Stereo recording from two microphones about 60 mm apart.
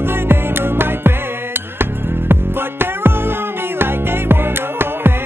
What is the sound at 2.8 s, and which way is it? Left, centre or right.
Music, right.